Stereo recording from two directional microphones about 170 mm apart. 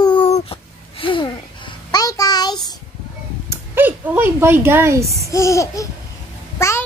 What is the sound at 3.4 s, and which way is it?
Speech, 15° right (ahead or behind).